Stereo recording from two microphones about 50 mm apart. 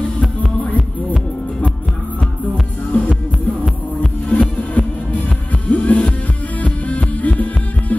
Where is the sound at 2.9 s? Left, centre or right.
Left.